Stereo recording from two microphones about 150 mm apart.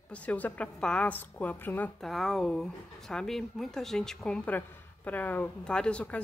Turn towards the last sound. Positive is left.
turn(degrees=10)  # may be behind; listen again after turning